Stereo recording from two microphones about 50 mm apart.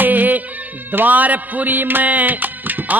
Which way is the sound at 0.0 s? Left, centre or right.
Right.